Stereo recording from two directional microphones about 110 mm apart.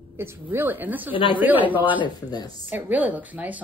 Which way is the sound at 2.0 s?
40° left (ahead or behind).